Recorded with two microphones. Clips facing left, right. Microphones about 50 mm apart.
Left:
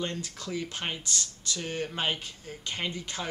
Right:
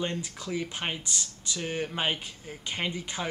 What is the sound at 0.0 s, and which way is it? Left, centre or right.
Speech, centre.